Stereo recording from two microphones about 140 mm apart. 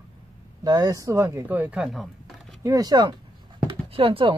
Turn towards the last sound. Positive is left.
turn(degrees=-40)  # may be behind; listen again after turning